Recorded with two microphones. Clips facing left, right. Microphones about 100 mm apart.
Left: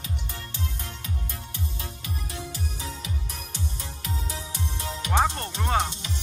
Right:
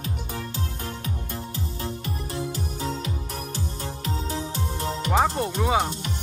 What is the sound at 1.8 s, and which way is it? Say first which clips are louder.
Music: right 6 dB; 35° right (ahead or behind).